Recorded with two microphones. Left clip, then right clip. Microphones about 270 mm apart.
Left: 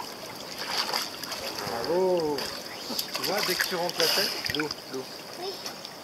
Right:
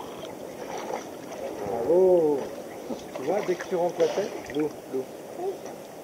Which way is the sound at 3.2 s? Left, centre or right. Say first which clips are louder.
Right 2 dB; left.